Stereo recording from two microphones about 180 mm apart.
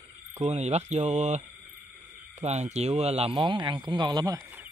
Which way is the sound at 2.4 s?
40° right (ahead or behind).